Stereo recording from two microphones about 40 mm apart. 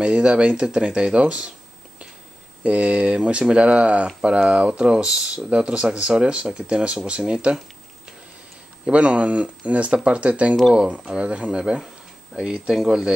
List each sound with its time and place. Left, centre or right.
0.0 s speech: right
2.6 s speech: right
8.9 s speech: right
12.7 s speech: centre